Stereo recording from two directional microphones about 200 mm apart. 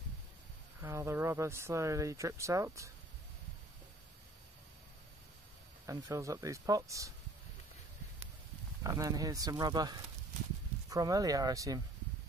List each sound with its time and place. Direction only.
0.7 s speech: 15° right (ahead or behind)
5.9 s speech: 15° right (ahead or behind)
8.8 s speech: 15° right (ahead or behind)